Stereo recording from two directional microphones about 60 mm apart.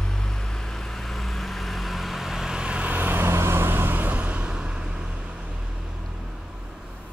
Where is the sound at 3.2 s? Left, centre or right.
Right; by 5.4 s centre.